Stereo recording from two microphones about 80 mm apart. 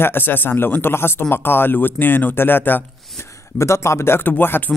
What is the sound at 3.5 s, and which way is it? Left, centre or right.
Speech, left.